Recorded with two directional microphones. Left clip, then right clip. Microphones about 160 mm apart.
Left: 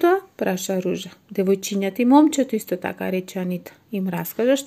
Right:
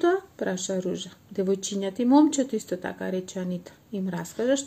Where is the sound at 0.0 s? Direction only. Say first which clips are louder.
Left 5 dB; 40° left (ahead or behind).